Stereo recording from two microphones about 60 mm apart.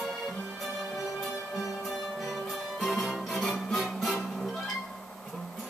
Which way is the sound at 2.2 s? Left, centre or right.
Centre.